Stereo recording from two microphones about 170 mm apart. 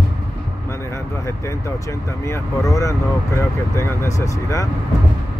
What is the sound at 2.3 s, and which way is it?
Speech, 20° left (ahead or behind).